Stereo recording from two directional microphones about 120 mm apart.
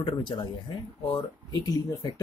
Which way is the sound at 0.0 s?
40° left (ahead or behind).